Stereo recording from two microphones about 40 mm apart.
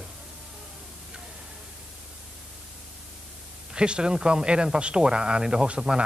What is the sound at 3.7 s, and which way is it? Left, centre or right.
Speech, right.